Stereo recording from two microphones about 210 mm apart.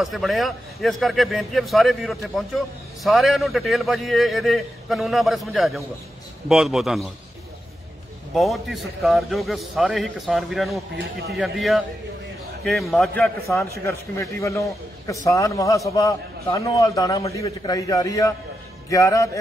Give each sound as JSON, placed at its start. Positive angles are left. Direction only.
{"t": 0.0, "sound": "a man's voice", "side_deg": 0}
{"t": 8.4, "sound": "a man's voice", "side_deg": 0}
{"t": 14.4, "sound": "a man's voice", "side_deg": 15}